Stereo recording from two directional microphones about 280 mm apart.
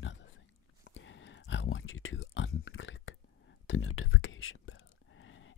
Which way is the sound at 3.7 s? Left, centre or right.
Left.